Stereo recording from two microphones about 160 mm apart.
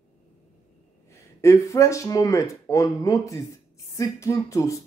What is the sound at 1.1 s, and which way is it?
Speech, 20° left (ahead or behind).